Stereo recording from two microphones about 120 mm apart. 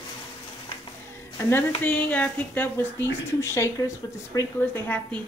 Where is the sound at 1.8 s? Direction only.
10° left (ahead or behind).